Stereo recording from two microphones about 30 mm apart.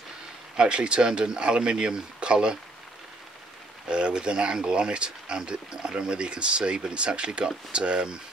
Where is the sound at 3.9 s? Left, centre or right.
Right.